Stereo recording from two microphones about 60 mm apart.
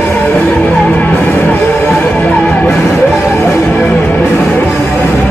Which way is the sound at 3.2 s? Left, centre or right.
Left.